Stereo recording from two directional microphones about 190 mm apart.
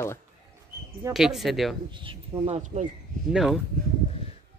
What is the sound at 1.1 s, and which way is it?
Speech, centre (ahead or behind).